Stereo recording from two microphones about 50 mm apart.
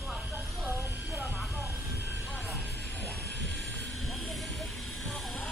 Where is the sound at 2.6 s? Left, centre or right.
Left.